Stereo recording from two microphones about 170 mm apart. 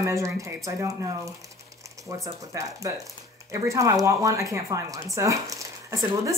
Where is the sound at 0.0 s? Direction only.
20° right (ahead or behind).